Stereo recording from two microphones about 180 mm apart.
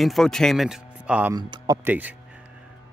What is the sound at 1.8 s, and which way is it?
Speech, 10° right (ahead or behind).